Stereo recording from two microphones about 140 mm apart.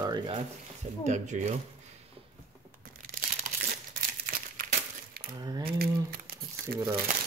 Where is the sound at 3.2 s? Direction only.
80° right.